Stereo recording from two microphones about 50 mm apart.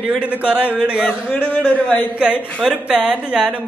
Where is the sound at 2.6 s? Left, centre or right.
Centre.